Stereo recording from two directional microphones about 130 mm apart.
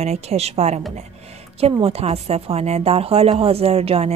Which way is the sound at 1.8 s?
50° right (ahead or behind).